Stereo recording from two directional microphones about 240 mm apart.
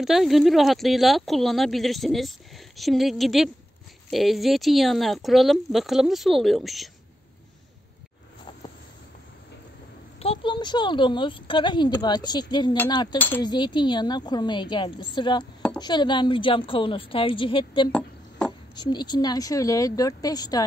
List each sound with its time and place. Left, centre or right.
0.0 s speech: centre
10.1 s a woman's voice: left; by 13.5 s centre
13.5 s a woman's voice: centre